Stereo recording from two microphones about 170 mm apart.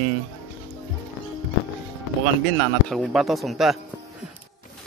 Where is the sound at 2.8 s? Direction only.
Centre (ahead or behind).